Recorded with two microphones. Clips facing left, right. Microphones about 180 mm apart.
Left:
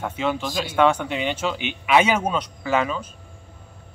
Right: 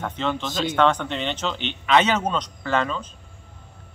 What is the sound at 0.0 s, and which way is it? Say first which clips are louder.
Speech: left 2 dB; 10° left (ahead or behind).